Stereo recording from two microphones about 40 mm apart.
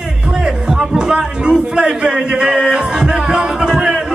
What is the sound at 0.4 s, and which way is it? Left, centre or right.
Music, centre.